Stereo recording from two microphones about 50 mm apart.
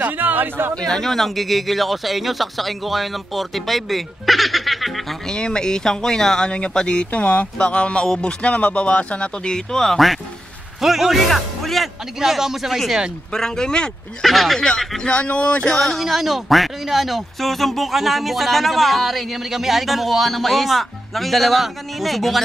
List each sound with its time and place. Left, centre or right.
0.0 s speech: right
0.8 s speech: centre
5.3 s speech: centre
10.8 s a man's voice: centre
13.3 s speech: centre
14.2 s speech: centre
14.6 s speech: centre
16.0 s speech: centre